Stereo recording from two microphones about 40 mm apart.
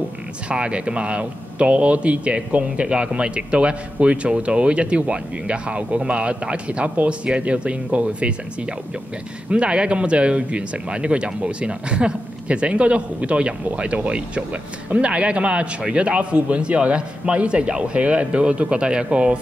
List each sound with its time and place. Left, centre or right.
0.5 s speech: right
9.5 s speech: right